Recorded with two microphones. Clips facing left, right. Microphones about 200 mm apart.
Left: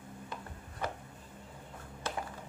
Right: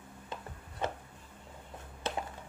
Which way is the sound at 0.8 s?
25° right (ahead or behind).